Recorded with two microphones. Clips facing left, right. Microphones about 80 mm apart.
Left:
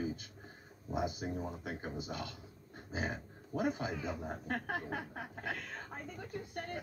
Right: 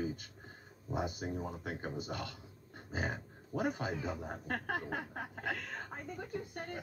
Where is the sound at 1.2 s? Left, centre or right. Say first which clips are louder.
Even; right.